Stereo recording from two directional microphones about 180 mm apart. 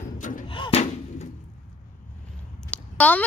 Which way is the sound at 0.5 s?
30° left (ahead or behind).